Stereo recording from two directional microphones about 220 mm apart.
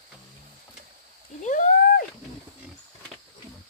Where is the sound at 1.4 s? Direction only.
35° left (ahead or behind).